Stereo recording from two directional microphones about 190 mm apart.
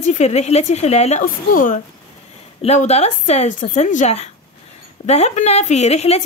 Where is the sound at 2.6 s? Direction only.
35° left (ahead or behind).